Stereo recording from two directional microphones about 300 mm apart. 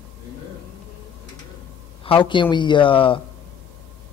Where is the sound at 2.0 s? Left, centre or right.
Centre.